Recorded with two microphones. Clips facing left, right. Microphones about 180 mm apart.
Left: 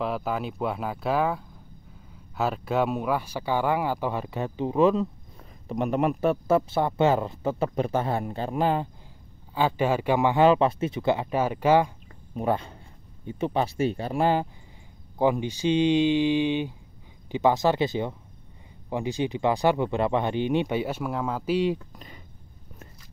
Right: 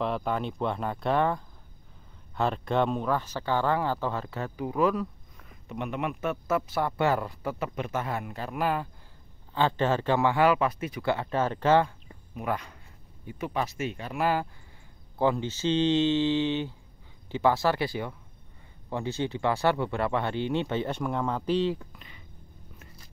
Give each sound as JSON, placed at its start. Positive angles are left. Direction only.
{"t": 0.0, "sound": "speech", "side_deg": 5}
{"t": 5.7, "sound": "speech", "side_deg": 40}
{"t": 9.5, "sound": "speech", "side_deg": 10}
{"t": 12.4, "sound": "speech", "side_deg": 30}
{"t": 15.1, "sound": "speech", "side_deg": 15}
{"t": 21.9, "sound": "a sound", "side_deg": 40}